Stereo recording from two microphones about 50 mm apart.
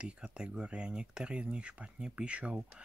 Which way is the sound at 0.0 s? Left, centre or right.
Centre.